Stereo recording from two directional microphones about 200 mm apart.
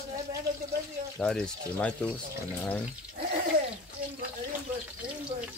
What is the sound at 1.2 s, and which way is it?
Speech, 5° left (ahead or behind).